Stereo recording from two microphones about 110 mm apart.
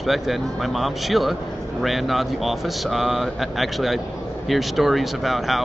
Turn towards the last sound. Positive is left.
turn(degrees=0)  # may be behind; listen again after turning